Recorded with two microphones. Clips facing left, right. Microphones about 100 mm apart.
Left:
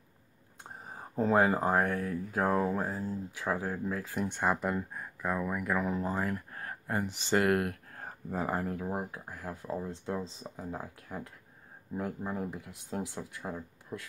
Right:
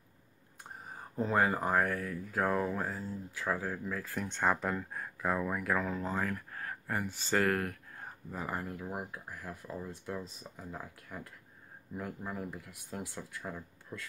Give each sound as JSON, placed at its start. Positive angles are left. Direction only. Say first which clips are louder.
{"t": 0.7, "sound": "a sound", "louder": "left 1 dB", "side_deg": 25}
{"t": 1.1, "sound": "speech", "louder": "left 5 dB", "side_deg": 40}
{"t": 1.4, "sound": "speech", "louder": "left 3 dB", "side_deg": 25}
{"t": 5.8, "sound": "speech", "louder": "left 2 dB", "side_deg": 15}
{"t": 7.9, "sound": "speech", "louder": "left 6 dB", "side_deg": 45}